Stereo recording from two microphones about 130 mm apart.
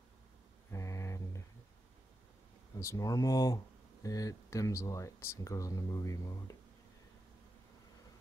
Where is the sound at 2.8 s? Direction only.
25° left (ahead or behind).